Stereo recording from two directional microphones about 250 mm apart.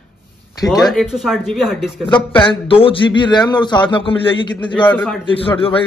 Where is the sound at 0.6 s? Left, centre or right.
Centre.